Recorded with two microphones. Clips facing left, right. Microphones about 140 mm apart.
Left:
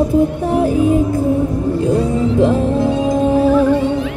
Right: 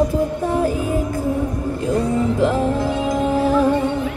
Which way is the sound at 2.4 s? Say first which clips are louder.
Left 5 dB; 25° left (ahead or behind).